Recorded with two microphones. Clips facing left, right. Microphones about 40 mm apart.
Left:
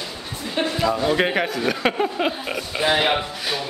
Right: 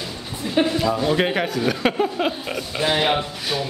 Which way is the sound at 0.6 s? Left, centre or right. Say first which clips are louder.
Right 2 dB; centre.